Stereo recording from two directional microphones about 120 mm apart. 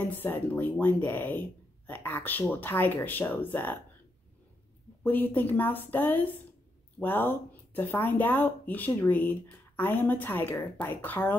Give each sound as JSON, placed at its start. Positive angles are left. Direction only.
{"t": 0.0, "sound": "speech", "side_deg": 15}
{"t": 5.0, "sound": "speech", "side_deg": 15}